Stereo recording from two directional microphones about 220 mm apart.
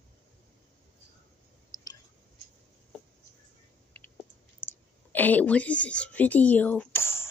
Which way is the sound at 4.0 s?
10° left (ahead or behind).